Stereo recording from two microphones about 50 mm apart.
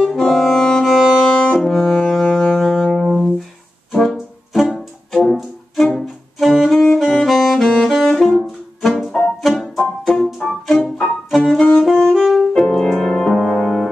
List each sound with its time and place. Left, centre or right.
0.0 s saxophone: centre
0.9 s music: centre
1.6 s brass instrument: centre
3.9 s music: centre
5.9 s music: centre
6.7 s saxophone: centre
9.4 s music: centre
10.7 s organ: centre
11.2 s music: centre
11.9 s saxophone: centre
12.4 s music: centre